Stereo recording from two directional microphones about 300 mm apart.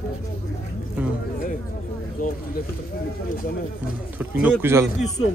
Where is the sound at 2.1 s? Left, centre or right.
Left.